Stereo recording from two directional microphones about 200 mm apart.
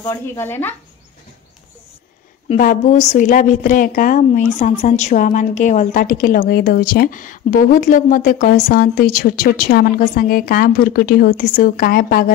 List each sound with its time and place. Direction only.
0.0 s speech: 10° left (ahead or behind)
2.5 s a woman's voice: 40° left (ahead or behind)